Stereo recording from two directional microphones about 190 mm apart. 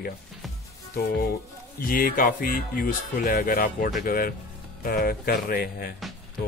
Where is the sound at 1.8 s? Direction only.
50° left (ahead or behind).